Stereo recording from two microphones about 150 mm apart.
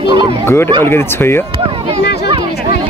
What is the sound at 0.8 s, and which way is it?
Speech, 15° left (ahead or behind).